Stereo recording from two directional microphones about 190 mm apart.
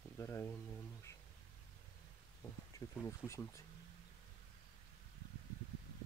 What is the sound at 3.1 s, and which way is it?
Speech, 15° left (ahead or behind).